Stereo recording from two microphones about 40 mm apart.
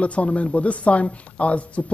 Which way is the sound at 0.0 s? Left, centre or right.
Left.